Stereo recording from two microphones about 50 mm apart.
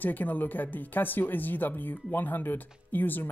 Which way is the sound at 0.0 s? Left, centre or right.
Left.